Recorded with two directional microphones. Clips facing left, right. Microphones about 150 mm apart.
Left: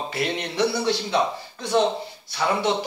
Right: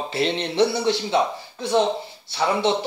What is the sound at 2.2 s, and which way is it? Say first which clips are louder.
Speech: right 2 dB; 25° right (ahead or behind).